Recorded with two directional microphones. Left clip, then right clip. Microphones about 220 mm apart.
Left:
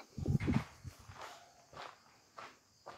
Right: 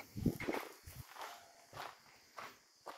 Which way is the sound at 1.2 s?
50° right (ahead or behind).